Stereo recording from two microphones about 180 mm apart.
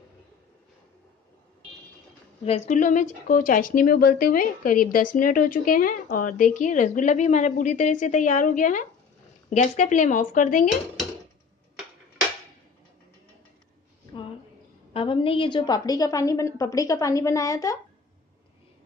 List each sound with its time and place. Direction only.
2.4 s a woman's voice: 35° left (ahead or behind)
2.7 s speech: 45° left (ahead or behind)
14.9 s a woman's voice: 30° left (ahead or behind)